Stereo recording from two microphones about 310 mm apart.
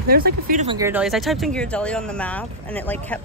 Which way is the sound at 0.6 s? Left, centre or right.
Centre.